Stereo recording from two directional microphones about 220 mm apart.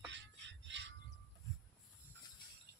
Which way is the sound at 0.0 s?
55° right (ahead or behind).